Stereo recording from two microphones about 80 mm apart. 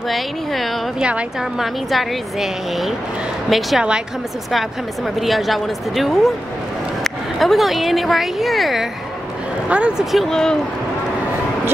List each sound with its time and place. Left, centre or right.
0.1 s a woman's voice: centre
1.0 s a woman's voice: centre
1.9 s a woman's voice: centre
9.7 s a woman's voice: centre
10.1 s speech: centre